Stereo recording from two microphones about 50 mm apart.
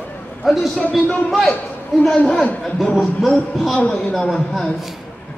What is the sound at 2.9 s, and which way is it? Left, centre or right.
Speech, centre.